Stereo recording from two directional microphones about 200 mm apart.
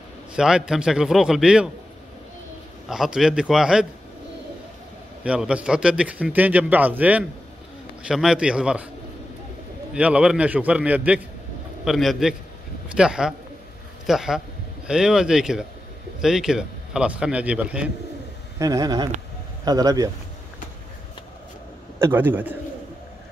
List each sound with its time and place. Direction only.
0.4 s a man's voice: 5° right (ahead or behind)
2.9 s a man's voice: 5° right (ahead or behind)
5.2 s a man's voice: 5° right (ahead or behind)
9.9 s a man's voice: 5° right (ahead or behind)
18.6 s speech: 20° right (ahead or behind)
21.9 s a man's voice: 10° right (ahead or behind)